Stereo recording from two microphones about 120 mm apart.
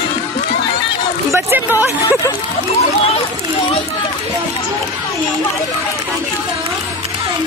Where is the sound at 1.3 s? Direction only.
20° right (ahead or behind).